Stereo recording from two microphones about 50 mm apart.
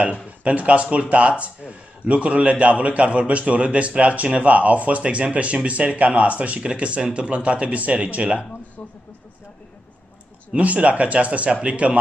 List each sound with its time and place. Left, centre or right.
0.1 s speech: right
10.5 s speech: right